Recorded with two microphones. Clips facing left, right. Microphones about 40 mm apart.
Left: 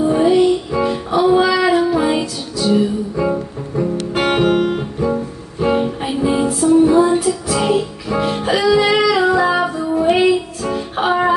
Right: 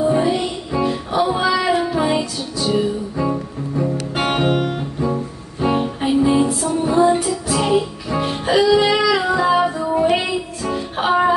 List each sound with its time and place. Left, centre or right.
0.0 s music: centre
3.2 s music: centre
4.1 s music: centre
4.7 s music: centre
8.1 s music: centre
8.8 s female singing: centre
10.1 s music: centre